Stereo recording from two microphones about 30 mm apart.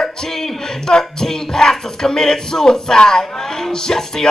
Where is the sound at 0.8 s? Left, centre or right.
Left.